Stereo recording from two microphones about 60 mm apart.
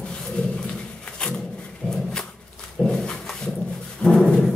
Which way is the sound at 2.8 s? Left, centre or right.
Centre.